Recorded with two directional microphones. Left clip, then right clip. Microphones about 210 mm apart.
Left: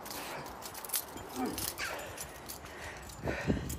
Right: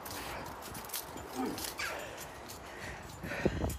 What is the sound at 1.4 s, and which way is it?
Dog, 5° right (ahead or behind).